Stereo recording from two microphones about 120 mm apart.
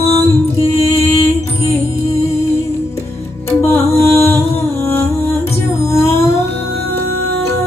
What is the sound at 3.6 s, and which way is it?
Music, 20° left (ahead or behind).